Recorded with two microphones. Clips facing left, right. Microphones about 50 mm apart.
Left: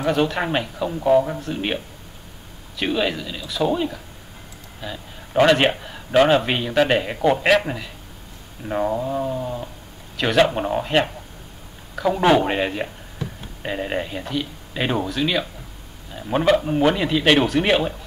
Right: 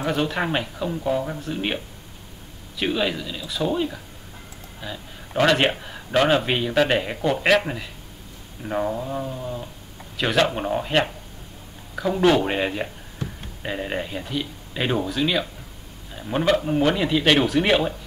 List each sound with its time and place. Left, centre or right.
0.0 s speech: centre
2.8 s speech: centre
9.2 s speech: centre
10.1 s a man's voice: centre
12.4 s speech: centre